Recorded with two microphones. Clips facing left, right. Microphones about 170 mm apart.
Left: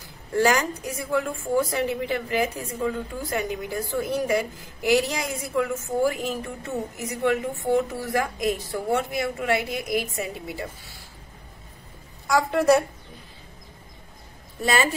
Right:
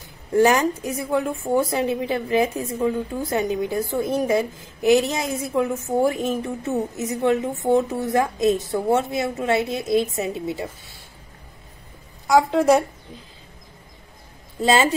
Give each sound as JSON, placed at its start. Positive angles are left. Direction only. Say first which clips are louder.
{"t": 0.3, "sound": "a woman's voice", "louder": "right 4 dB", "side_deg": -20}
{"t": 12.3, "sound": "a woman's voice", "louder": "right 3 dB", "side_deg": -15}
{"t": 14.6, "sound": "a woman's voice", "louder": "right 5 dB", "side_deg": -20}